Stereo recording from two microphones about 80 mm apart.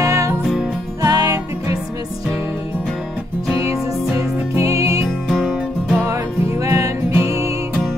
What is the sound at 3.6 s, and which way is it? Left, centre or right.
Music, right.